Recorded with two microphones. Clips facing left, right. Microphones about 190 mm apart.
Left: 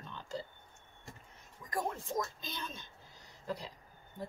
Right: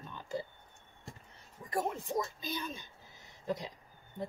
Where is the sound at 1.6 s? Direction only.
25° right (ahead or behind).